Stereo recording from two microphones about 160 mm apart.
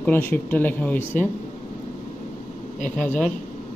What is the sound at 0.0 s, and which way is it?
Speech, 10° left (ahead or behind).